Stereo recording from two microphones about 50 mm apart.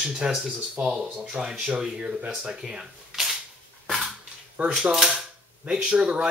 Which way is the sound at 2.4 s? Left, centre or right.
Centre.